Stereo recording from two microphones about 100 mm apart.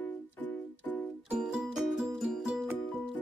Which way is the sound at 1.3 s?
5° right (ahead or behind).